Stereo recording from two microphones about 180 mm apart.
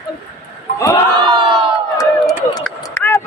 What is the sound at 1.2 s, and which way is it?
Crowd, 25° right (ahead or behind).